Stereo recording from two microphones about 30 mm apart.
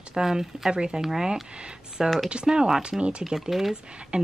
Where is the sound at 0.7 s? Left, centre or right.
Right.